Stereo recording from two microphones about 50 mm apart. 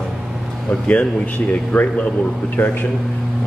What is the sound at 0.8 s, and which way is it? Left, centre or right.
Speech, left.